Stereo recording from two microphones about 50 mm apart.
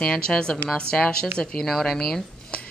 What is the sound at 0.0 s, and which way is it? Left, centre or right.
A woman's voice, centre.